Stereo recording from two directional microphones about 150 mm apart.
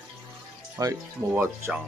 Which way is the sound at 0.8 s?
25° right (ahead or behind).